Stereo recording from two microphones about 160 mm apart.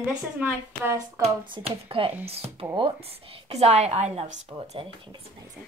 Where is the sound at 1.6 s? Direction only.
35° right (ahead or behind).